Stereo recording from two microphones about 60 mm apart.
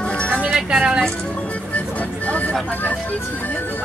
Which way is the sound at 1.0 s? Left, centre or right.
Left.